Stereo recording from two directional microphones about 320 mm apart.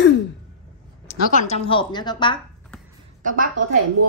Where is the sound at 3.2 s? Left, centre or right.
Right.